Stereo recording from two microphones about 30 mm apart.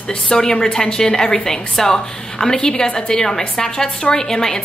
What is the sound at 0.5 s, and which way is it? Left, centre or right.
A woman's voice, left.